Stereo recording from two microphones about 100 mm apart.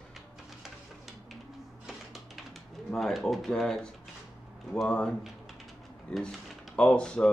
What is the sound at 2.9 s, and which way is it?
Speech, 5° left (ahead or behind).